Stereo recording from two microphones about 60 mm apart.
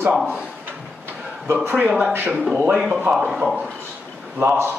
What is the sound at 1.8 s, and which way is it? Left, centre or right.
Speech, centre.